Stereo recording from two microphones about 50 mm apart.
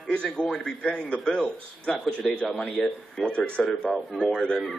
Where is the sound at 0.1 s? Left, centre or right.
Centre.